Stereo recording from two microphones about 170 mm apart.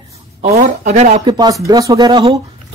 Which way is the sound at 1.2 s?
25° right (ahead or behind).